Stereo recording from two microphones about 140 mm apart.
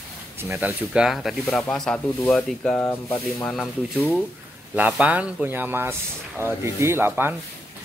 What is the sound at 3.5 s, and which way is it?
Speech, centre (ahead or behind).